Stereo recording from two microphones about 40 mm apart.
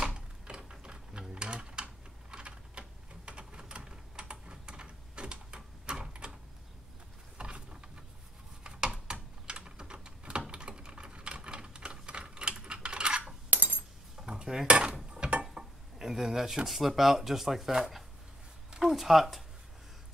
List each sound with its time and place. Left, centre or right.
0.0 s a sound: right
1.3 s typing: right
7.3 s a sound: right
8.6 s typing: right
13.5 s a sound: right
14.2 s cutlery: centre
14.7 s dishes: right
15.0 s mechanisms: right
16.0 s speech: centre